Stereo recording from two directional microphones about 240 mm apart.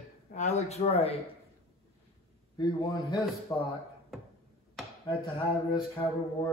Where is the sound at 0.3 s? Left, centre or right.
Left.